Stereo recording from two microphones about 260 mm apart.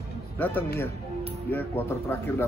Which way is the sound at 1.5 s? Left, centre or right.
Centre.